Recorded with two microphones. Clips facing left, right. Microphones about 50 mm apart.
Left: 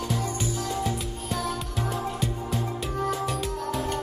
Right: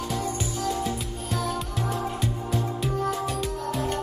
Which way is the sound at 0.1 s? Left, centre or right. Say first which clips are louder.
Even; centre.